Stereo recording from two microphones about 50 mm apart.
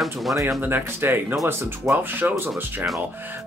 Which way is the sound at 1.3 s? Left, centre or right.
Right.